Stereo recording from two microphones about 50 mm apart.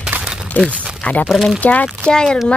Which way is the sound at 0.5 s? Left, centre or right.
Left.